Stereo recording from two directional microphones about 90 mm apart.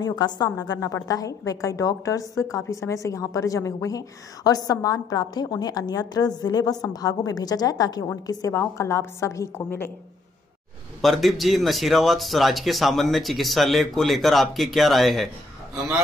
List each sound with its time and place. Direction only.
0.0 s a woman's voice: 50° left (ahead or behind); by 9.8 s 35° left (ahead or behind)
11.0 s a man's voice: centre (ahead or behind)